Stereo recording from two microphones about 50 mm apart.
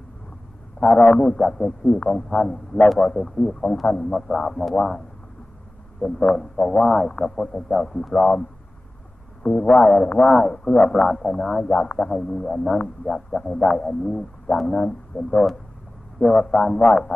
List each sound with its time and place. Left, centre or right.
0.7 s a man's voice: centre
3.8 s music: centre
4.1 s speech: centre
11.6 s music: left
12.0 s speech: centre
15.1 s speech: left
16.2 s speech: centre